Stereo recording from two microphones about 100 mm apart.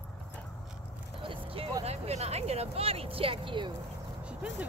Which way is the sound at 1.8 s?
90° right.